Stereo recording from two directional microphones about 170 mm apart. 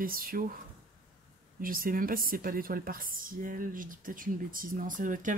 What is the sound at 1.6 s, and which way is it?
Speech, 55° right (ahead or behind).